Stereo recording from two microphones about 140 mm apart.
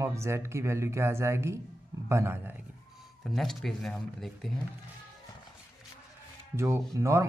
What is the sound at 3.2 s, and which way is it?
Speech, centre (ahead or behind).